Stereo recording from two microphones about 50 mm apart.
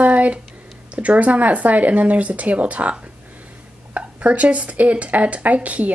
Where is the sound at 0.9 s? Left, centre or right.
Right.